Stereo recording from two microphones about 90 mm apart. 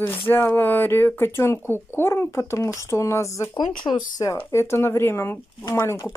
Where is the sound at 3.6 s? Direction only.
55° left (ahead or behind).